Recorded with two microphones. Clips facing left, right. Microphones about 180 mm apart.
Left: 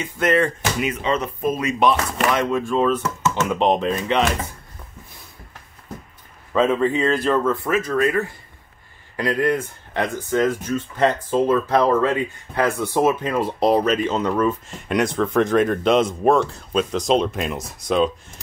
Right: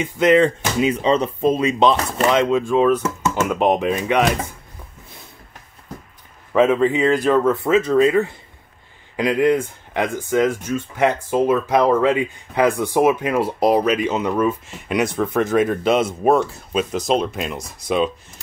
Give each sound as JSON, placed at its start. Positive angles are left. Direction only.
{"t": 0.0, "sound": "speech", "side_deg": -15}
{"t": 6.5, "sound": "speech", "side_deg": -15}